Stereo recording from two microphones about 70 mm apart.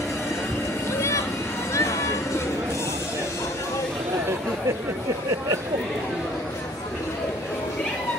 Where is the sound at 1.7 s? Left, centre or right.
Left.